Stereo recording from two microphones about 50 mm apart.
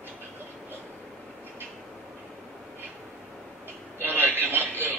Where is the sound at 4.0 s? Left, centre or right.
Right.